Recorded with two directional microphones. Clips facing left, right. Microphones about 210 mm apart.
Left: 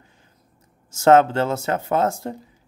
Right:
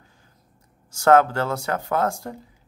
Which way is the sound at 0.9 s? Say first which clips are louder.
Left 2 dB; 20° left (ahead or behind).